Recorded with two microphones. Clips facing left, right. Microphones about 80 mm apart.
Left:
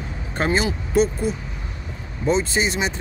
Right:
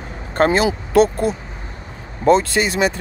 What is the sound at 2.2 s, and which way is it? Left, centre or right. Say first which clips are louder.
Speech: right 6 dB; right.